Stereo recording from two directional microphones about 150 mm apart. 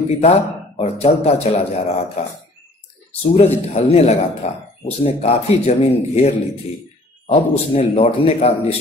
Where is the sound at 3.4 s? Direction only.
45° left (ahead or behind).